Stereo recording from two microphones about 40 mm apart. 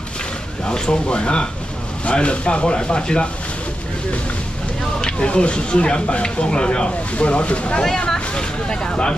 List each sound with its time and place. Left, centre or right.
0.7 s speech: left
5.0 s speech: left